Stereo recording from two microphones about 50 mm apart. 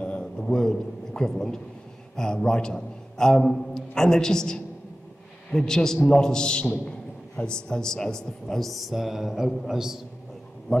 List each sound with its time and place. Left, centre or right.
0.0 s a sound: centre
2.1 s a man's voice: centre
10.7 s a man's voice: centre